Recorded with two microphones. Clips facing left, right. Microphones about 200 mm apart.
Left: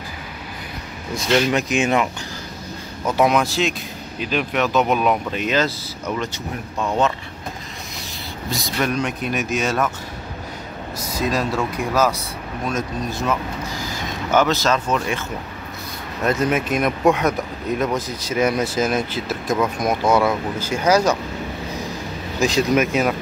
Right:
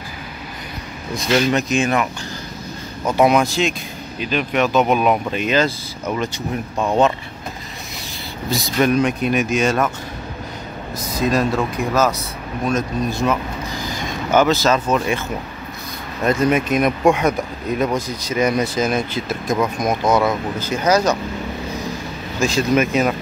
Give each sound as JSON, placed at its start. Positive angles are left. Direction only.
{"t": 1.5, "sound": "speech", "side_deg": 15}
{"t": 3.2, "sound": "speech", "side_deg": 0}
{"t": 8.5, "sound": "speech", "side_deg": 0}
{"t": 11.1, "sound": "speech", "side_deg": -55}
{"t": 11.5, "sound": "speech", "side_deg": 10}
{"t": 14.3, "sound": "speech", "side_deg": 0}
{"t": 16.3, "sound": "speech", "side_deg": 0}
{"t": 22.4, "sound": "speech", "side_deg": 15}